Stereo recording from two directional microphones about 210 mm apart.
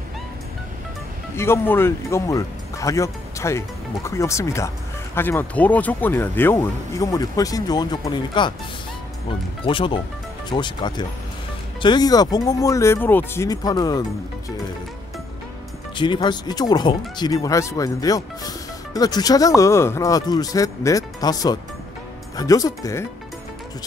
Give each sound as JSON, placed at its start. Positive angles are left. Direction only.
{"t": 1.3, "sound": "speech", "side_deg": 10}
{"t": 9.7, "sound": "speech", "side_deg": 25}
{"t": 16.0, "sound": "speech", "side_deg": 20}